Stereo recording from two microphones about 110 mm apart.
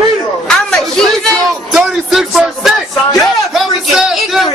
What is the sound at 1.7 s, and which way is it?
Music, centre (ahead or behind).